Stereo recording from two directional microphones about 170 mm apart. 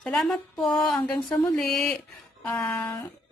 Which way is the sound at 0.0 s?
5° left (ahead or behind).